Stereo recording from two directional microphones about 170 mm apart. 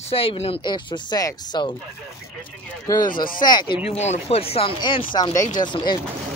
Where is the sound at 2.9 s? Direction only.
20° left (ahead or behind).